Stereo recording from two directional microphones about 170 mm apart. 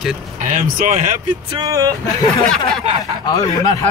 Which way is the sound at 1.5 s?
20° right (ahead or behind).